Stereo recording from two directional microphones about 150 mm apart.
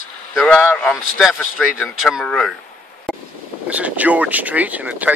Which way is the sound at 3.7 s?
10° right (ahead or behind).